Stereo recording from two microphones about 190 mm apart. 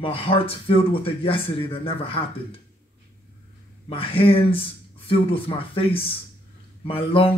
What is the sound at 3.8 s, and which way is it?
Speech, 30° left (ahead or behind).